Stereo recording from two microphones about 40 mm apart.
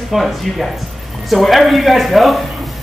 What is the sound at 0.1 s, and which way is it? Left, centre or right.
A man's voice, centre.